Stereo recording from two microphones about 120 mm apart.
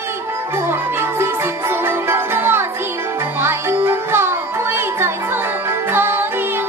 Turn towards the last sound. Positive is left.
turn(degrees=-20)  # may be behind; listen again after turning